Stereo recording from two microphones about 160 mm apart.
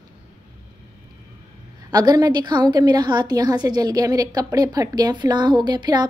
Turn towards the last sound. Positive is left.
turn(degrees=-25)  # may be behind; listen again after turning